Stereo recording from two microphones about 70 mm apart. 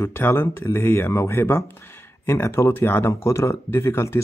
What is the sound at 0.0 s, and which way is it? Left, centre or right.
Speech, left.